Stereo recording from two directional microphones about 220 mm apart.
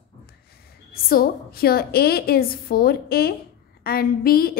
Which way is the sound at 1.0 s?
40° left (ahead or behind).